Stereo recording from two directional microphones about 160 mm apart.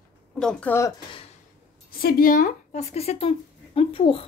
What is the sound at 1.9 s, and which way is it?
Speech, 65° left (ahead or behind).